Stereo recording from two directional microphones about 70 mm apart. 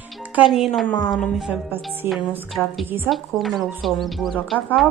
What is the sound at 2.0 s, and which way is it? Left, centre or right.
Speech, right.